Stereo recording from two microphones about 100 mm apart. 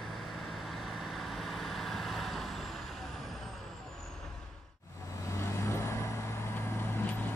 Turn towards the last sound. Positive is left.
turn(degrees=20)  # may be behind; listen again after turning